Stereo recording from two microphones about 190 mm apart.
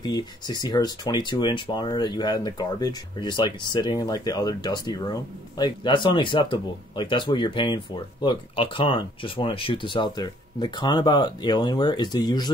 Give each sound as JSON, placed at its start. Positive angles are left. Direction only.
{"t": 0.0, "sound": "speech", "side_deg": 20}